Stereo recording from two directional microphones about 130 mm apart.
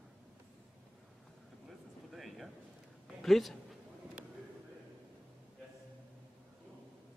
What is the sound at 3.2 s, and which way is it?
Speech, centre (ahead or behind).